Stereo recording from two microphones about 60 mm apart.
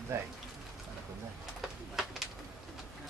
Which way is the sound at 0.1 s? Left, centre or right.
Right.